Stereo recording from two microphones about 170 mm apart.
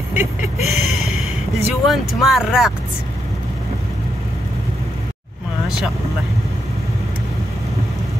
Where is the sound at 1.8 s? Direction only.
Centre (ahead or behind).